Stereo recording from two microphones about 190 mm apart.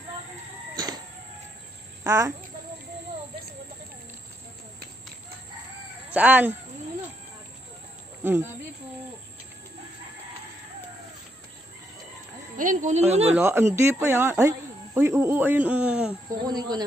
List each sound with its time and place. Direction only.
0.7 s a sound: 20° right (ahead or behind)
2.0 s speech: 15° right (ahead or behind)
6.1 s speech: 10° right (ahead or behind)
8.2 s speech: 10° right (ahead or behind)
12.5 s speech: 40° right (ahead or behind)
13.4 s speech: 15° right (ahead or behind)
16.4 s speech: 20° right (ahead or behind)